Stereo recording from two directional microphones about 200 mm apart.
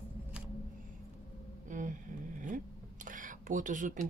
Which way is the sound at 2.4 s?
40° right (ahead or behind).